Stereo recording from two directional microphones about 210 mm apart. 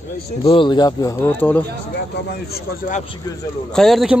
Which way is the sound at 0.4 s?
25° left (ahead or behind).